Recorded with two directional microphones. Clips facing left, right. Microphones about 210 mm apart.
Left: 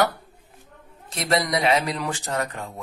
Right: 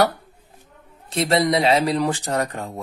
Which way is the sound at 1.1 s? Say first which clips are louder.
Right 5 dB; 30° right (ahead or behind).